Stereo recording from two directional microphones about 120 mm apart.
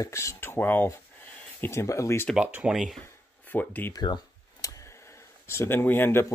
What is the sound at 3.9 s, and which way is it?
Speech, 35° left (ahead or behind).